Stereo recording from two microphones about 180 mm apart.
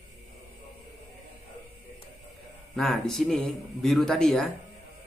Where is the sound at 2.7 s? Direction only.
Centre (ahead or behind).